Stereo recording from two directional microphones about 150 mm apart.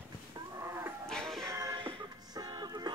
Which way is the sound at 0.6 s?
15° right (ahead or behind).